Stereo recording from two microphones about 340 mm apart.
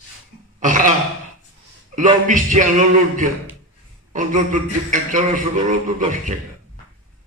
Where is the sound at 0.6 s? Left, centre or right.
Right.